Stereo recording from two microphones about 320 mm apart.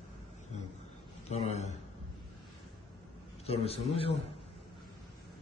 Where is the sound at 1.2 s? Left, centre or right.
Centre.